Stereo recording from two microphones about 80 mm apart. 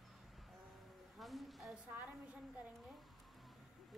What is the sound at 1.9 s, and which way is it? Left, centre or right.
Speech, right.